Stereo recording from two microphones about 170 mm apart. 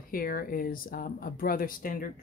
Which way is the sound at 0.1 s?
60° left (ahead or behind).